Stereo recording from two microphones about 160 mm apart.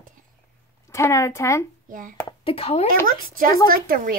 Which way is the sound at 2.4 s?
40° left (ahead or behind).